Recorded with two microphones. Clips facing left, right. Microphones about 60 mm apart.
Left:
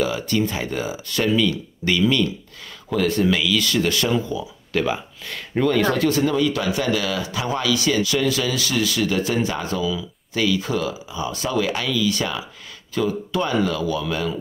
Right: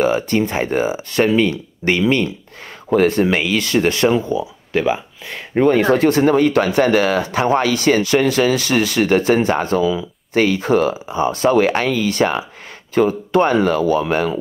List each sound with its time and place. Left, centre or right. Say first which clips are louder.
0.0 s speech: right 5 dB; right
4.7 s speech: right 4 dB; centre; by 14.4 s right